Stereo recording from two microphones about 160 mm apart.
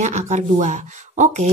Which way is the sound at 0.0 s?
50° right (ahead or behind).